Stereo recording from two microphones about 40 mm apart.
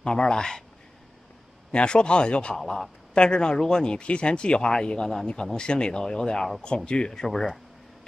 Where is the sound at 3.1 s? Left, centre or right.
Left.